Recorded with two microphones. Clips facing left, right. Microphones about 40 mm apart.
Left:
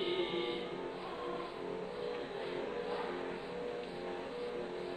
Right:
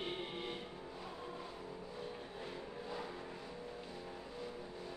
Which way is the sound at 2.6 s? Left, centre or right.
Left.